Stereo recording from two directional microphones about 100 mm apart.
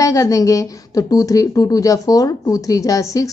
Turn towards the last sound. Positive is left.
turn(degrees=35)  # may be behind; listen again after turning